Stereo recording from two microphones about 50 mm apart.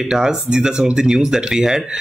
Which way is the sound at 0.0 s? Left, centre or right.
Centre.